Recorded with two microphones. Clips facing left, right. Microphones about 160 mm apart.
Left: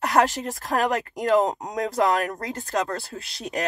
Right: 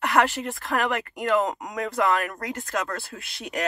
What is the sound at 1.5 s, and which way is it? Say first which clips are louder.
Speech: left 2 dB; 25° left (ahead or behind).